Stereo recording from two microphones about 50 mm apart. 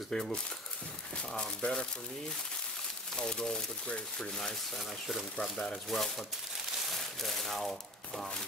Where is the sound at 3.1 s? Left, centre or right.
Centre.